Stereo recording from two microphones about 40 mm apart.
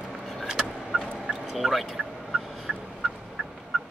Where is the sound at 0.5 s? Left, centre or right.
Centre.